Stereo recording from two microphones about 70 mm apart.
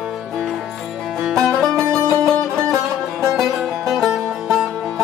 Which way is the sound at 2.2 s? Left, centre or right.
Centre.